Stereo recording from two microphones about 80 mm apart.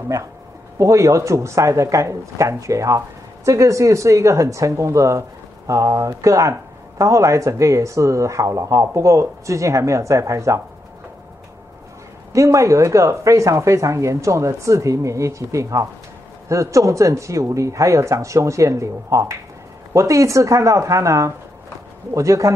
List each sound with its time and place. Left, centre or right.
0.7 s speech: right
12.3 s speech: right